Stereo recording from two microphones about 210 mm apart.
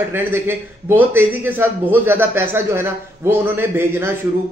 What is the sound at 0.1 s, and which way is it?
A man's voice, 10° right (ahead or behind).